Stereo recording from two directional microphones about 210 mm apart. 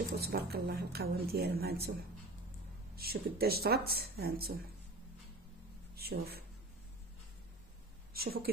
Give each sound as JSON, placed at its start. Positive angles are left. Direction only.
{"t": 0.2, "sound": "speech", "side_deg": -50}
{"t": 3.0, "sound": "speech", "side_deg": -45}
{"t": 5.9, "sound": "speech", "side_deg": -50}
{"t": 8.1, "sound": "speech", "side_deg": -45}